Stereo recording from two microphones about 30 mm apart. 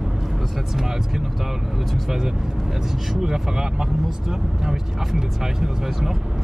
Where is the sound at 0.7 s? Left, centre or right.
Centre.